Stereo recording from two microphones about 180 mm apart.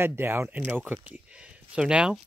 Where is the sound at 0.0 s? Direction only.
10° right (ahead or behind).